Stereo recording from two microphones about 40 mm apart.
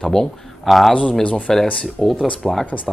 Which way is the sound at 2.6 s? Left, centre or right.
Left.